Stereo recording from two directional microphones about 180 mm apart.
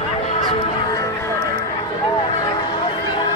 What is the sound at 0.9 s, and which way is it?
Music, 15° left (ahead or behind).